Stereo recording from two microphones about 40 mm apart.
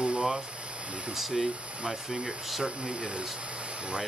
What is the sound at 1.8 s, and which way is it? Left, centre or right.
Speech, centre.